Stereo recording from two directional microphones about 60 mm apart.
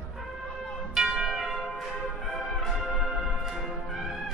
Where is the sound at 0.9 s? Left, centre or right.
Centre.